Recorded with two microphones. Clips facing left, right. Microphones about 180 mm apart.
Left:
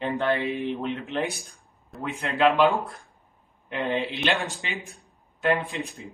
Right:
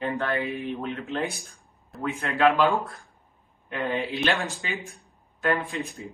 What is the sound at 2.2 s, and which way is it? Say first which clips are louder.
Speech: left 1 dB; 20° left (ahead or behind).